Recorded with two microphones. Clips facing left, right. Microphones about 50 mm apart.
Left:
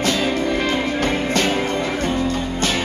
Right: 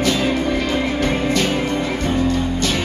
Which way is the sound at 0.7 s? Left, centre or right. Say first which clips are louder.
Right 1 dB; left.